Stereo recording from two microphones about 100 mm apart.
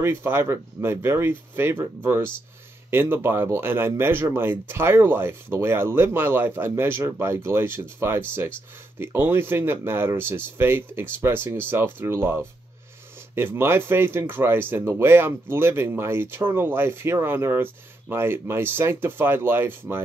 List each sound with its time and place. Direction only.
0.0 s speech: 25° right (ahead or behind)